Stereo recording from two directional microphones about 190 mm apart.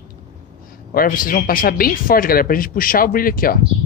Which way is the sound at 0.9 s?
50° left (ahead or behind).